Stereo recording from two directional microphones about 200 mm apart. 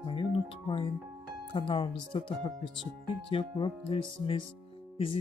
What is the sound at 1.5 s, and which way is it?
Speech, 20° left (ahead or behind).